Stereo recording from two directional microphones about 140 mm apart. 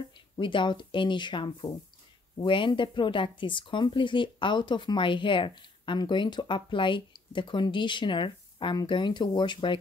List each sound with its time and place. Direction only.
0.4 s speech: 35° left (ahead or behind)